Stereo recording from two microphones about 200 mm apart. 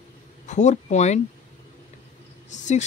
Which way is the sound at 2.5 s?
35° left (ahead or behind).